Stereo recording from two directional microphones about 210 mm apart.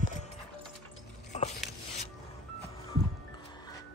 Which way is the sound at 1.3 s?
35° left (ahead or behind).